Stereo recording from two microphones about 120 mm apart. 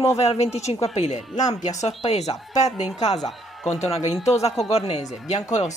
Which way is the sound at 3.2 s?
Centre (ahead or behind).